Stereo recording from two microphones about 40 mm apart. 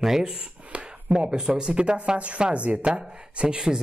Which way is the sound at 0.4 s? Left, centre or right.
Right.